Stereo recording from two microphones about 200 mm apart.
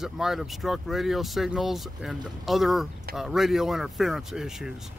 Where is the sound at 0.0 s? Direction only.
Centre (ahead or behind).